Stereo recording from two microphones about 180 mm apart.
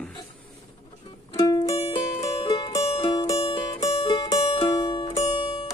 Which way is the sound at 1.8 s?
35° left (ahead or behind).